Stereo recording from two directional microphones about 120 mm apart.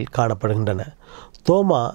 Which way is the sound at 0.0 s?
15° right (ahead or behind).